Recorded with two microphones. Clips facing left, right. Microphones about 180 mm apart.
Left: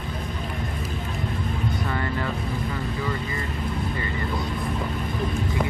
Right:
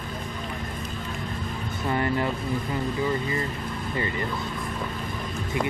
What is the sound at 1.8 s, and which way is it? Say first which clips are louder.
Speech: right 3 dB; 20° right (ahead or behind).